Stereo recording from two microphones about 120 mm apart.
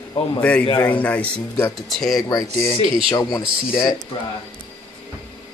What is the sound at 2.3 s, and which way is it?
Speech, 20° left (ahead or behind).